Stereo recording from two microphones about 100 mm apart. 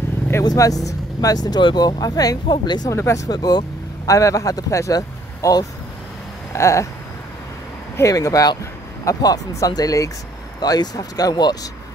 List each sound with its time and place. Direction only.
0.4 s speech: 40° left (ahead or behind)
2.4 s speech: 50° left (ahead or behind)
2.9 s a sound: 30° left (ahead or behind)
3.3 s speech: 45° left (ahead or behind)
6.5 s a sound: 30° left (ahead or behind)
7.9 s speech: 35° left (ahead or behind)